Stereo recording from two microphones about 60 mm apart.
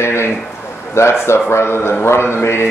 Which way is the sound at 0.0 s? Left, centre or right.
Left.